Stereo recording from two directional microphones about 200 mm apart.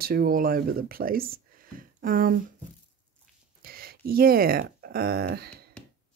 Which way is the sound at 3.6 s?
50° right (ahead or behind).